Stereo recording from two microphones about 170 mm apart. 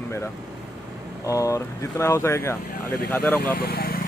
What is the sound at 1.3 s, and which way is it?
Speech, 20° left (ahead or behind).